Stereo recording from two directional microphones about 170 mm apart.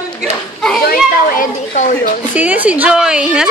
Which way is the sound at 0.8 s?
60° left (ahead or behind).